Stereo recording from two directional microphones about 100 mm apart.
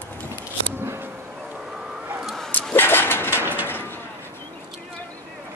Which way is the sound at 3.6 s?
20° left (ahead or behind).